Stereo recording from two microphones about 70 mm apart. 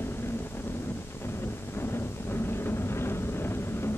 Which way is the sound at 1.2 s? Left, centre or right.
Left.